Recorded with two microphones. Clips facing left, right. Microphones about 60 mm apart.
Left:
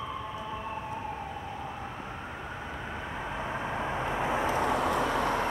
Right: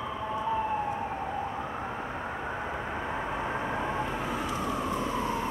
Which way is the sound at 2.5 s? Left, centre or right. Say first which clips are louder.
Right 4 dB; centre.